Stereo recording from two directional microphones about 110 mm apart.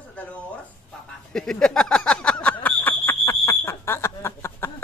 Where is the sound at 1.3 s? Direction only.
5° left (ahead or behind).